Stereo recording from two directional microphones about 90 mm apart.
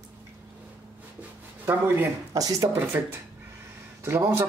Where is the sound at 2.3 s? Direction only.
45° right (ahead or behind).